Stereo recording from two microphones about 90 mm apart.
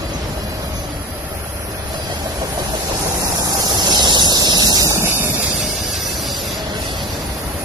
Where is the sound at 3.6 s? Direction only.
55° right (ahead or behind).